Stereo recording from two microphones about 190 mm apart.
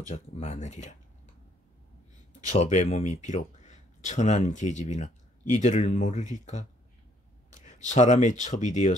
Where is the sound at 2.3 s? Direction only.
35° left (ahead or behind).